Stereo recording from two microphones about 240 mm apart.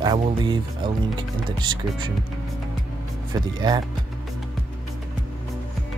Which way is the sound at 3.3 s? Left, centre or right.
Centre.